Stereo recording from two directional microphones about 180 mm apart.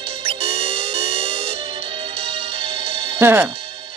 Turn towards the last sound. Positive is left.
turn(degrees=-10)  # may be behind; listen again after turning